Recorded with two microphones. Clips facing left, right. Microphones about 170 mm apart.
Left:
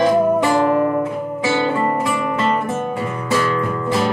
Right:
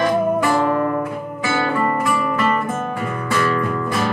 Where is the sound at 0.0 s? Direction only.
20° left (ahead or behind).